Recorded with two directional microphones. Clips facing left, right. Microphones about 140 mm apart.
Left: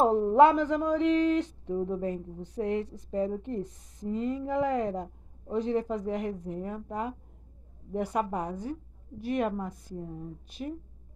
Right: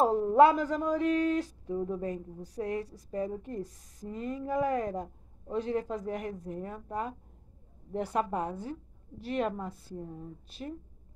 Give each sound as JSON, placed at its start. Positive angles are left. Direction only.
{"t": 0.0, "sound": "a woman's voice", "side_deg": 20}